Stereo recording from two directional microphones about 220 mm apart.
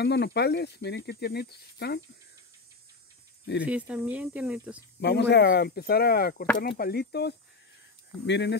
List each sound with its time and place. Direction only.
0.0 s speech: 50° left (ahead or behind)
3.6 s speech: 5° right (ahead or behind)
5.0 s speech: 50° left (ahead or behind)